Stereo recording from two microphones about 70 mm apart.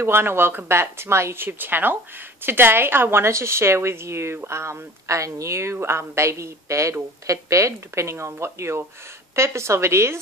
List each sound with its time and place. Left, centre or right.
0.0 s a woman's voice: right